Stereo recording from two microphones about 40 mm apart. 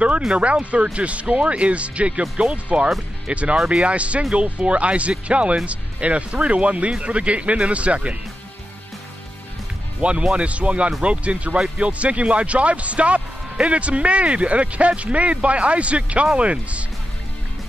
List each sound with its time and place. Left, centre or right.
0.3 s speech: right
3.5 s speech: centre
3.8 s speech: right
10.0 s speech: right